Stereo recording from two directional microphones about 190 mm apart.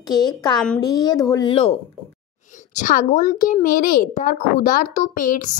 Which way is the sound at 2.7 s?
45° left (ahead or behind).